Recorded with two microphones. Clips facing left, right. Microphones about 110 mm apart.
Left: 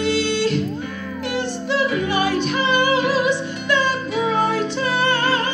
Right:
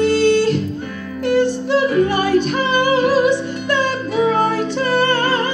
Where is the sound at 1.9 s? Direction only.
45° right (ahead or behind).